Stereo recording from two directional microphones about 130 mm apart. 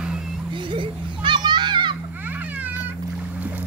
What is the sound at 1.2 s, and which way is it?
Children playing, 35° right (ahead or behind).